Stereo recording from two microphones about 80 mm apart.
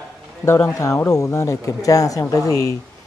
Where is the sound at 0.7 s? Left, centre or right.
Left.